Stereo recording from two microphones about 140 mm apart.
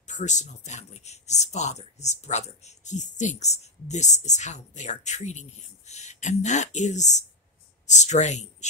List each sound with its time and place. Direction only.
0.0 s speech: 60° left (ahead or behind)